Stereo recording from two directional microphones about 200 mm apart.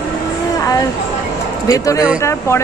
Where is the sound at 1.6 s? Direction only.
15° left (ahead or behind).